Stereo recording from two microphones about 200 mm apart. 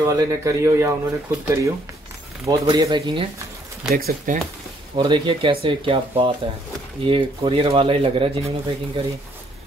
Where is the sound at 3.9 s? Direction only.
45° right (ahead or behind).